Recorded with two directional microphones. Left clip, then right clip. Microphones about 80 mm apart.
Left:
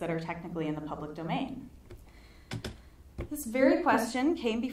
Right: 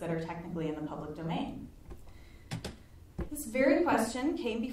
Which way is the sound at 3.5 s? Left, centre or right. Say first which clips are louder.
Left 2 dB; left.